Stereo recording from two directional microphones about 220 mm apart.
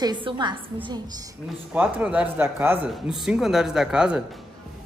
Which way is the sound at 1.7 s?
5° right (ahead or behind).